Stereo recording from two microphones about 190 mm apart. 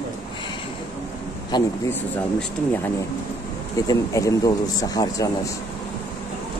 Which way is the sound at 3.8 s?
15° left (ahead or behind).